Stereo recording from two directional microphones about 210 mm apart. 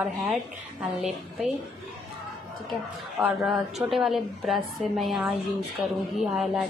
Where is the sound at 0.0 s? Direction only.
5° right (ahead or behind).